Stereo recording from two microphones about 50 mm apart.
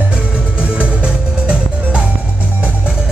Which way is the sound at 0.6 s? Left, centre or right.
Right.